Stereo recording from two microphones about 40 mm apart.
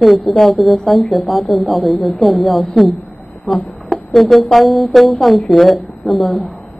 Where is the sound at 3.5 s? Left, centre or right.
Left.